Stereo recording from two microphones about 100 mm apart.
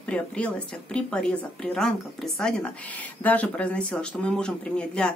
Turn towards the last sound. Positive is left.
turn(degrees=10)  # may be behind; listen again after turning